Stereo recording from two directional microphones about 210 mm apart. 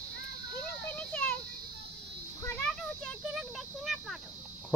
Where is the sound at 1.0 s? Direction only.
5° left (ahead or behind).